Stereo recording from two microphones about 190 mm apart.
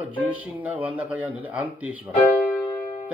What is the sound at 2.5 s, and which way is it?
Music, 10° left (ahead or behind).